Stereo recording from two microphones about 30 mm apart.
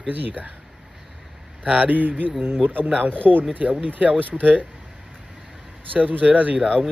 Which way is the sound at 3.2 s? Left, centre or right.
Right.